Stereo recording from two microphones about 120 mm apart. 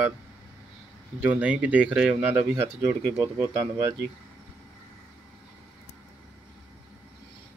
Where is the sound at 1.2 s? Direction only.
10° right (ahead or behind).